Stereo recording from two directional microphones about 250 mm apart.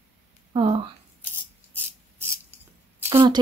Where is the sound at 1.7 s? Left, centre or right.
Centre.